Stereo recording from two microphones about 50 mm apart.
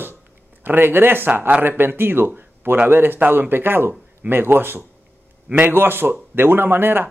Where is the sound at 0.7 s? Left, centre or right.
Right.